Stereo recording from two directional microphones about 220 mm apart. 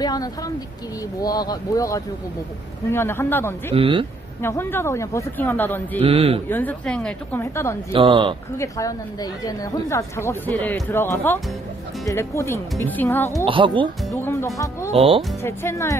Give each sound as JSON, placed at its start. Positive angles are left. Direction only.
{"t": 0.0, "sound": "a woman's voice", "side_deg": 15}
{"t": 3.7, "sound": "speech", "side_deg": -25}
{"t": 4.4, "sound": "a woman's voice", "side_deg": 10}
{"t": 5.9, "sound": "speech", "side_deg": -25}
{"t": 6.5, "sound": "a woman's voice", "side_deg": 5}
{"t": 7.9, "sound": "speech", "side_deg": -20}
{"t": 8.5, "sound": "a woman's voice", "side_deg": 15}
{"t": 13.5, "sound": "speech", "side_deg": -20}
{"t": 14.1, "sound": "a woman's voice", "side_deg": 10}
{"t": 14.9, "sound": "speech", "side_deg": -25}
{"t": 15.4, "sound": "a woman's voice", "side_deg": 10}